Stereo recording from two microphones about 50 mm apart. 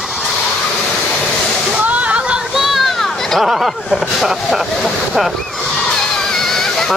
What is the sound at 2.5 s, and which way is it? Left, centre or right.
Children playing, centre.